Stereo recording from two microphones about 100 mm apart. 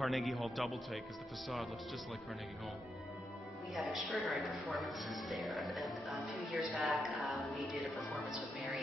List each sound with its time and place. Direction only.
0.0 s a man's voice: centre (ahead or behind)
3.7 s a man's voice: centre (ahead or behind)